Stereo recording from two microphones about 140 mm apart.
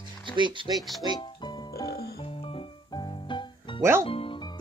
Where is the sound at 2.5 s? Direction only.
35° left (ahead or behind).